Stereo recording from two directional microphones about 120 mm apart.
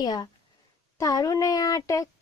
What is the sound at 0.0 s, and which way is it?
A child's voice, 35° left (ahead or behind).